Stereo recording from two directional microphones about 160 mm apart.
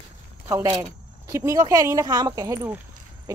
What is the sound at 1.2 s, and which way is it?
Speech, 20° right (ahead or behind).